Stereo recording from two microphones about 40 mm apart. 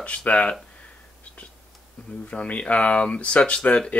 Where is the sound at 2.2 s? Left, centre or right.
Left.